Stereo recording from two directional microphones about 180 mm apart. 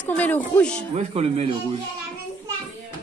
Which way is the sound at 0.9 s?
35° right (ahead or behind).